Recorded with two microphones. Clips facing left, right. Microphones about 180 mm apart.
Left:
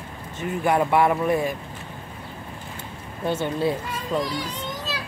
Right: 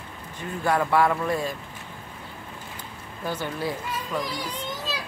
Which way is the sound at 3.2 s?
25° left (ahead or behind).